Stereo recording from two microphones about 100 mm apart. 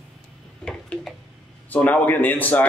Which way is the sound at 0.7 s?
10° left (ahead or behind).